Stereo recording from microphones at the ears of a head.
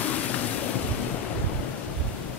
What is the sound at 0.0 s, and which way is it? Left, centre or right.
Waves, left.